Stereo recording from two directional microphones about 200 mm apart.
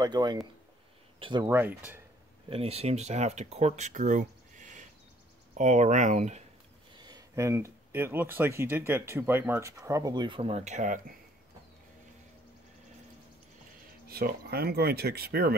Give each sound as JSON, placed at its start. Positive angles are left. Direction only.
{"t": 0.0, "sound": "speech", "side_deg": -20}
{"t": 2.5, "sound": "speech", "side_deg": -30}
{"t": 7.0, "sound": "speech", "side_deg": -20}
{"t": 14.0, "sound": "speech", "side_deg": -50}